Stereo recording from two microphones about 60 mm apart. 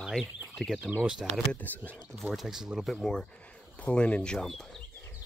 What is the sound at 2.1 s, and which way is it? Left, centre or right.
Speech, centre.